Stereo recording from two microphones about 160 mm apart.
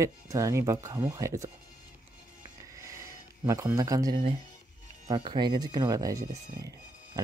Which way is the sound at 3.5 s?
20° right (ahead or behind).